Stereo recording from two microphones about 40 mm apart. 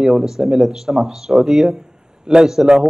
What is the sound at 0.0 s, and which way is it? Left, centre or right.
Speech, centre.